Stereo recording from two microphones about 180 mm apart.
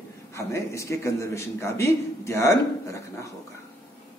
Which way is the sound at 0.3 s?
15° left (ahead or behind).